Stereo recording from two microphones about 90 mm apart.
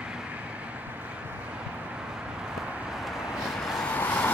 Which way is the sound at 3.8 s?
20° left (ahead or behind).